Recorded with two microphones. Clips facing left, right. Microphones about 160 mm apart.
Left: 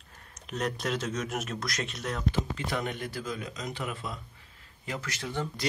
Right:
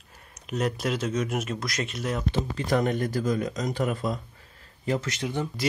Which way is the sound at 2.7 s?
40° right (ahead or behind).